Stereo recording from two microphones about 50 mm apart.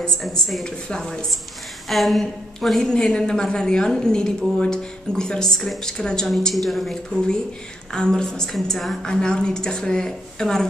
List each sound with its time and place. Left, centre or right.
0.2 s a woman's voice: centre
0.7 s a woman's voice: centre
1.9 s a woman's voice: centre
2.8 s a woman's voice: centre
6.2 s a woman's voice: centre
7.9 s a woman's voice: centre
9.0 s a woman's voice: centre